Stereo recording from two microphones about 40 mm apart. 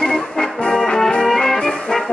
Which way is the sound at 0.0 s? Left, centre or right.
Centre.